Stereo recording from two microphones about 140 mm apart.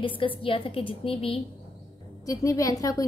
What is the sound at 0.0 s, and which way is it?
A woman's voice, 40° left (ahead or behind).